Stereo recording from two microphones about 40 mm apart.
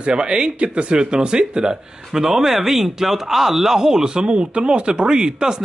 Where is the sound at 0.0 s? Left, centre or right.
Right.